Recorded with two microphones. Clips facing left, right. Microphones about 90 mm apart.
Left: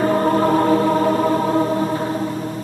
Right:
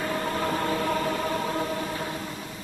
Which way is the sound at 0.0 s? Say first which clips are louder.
Left 12 dB; 40° left (ahead or behind).